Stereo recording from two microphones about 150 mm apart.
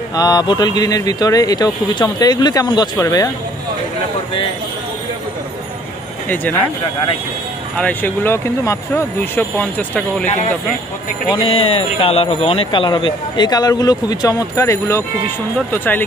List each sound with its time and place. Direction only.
0.1 s a man's voice: 25° left (ahead or behind)
6.2 s speech: 10° left (ahead or behind)
7.7 s speech: 10° left (ahead or behind)
10.2 s speech: 50° left (ahead or behind)
11.3 s a man's voice: 40° left (ahead or behind); by 16.0 s 15° left (ahead or behind)